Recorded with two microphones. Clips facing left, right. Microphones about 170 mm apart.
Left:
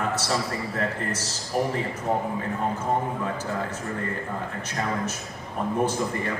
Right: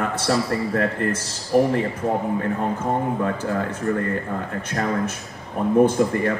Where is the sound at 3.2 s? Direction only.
55° right (ahead or behind).